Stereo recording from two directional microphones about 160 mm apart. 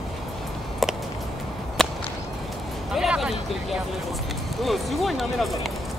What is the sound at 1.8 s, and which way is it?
Whip, 5° left (ahead or behind).